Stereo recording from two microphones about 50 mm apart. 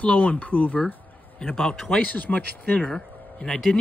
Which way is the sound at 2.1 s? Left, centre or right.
Left.